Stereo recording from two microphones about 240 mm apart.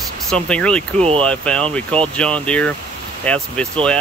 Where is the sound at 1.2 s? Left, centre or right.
Centre.